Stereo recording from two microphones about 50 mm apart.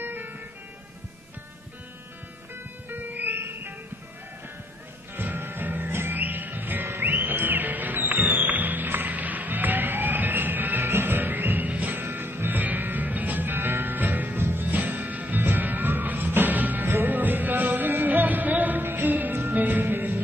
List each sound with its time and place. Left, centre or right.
0.0 s vehicle: right
2.9 s music: right
3.3 s music: right
5.1 s music: right